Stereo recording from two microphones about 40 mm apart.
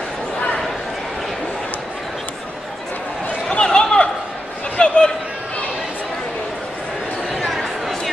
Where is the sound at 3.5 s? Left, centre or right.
Left.